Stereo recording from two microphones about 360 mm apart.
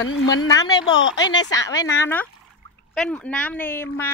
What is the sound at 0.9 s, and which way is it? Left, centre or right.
Speech, left.